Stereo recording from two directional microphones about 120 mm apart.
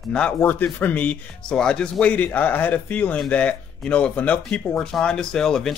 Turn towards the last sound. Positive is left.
turn(degrees=5)  # may be behind; listen again after turning